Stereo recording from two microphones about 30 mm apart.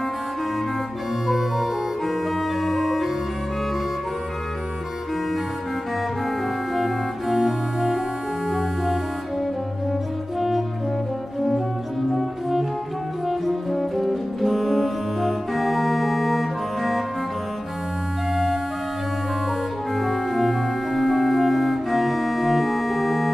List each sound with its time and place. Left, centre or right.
1.2 s organ: centre
6.8 s organ: centre
13.3 s brass instrument: centre
18.3 s music: centre
20.0 s organ: centre